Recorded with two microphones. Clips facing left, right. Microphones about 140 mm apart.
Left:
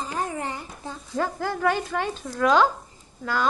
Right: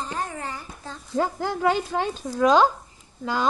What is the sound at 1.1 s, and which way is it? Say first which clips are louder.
Speech: right 2 dB; 15° right (ahead or behind).